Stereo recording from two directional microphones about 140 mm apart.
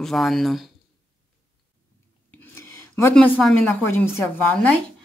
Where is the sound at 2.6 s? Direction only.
20° left (ahead or behind).